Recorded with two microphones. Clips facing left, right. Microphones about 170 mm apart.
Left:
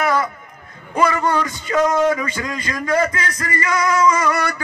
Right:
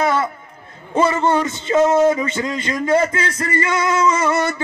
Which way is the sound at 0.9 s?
25° right (ahead or behind).